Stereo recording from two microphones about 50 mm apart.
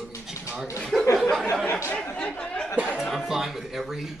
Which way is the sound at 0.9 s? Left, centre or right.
Centre.